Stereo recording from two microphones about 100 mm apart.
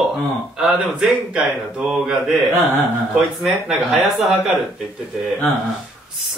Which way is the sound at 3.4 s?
5° right (ahead or behind).